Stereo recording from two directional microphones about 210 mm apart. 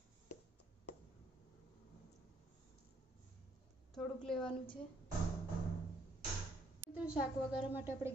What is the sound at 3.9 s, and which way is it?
Speech, centre (ahead or behind).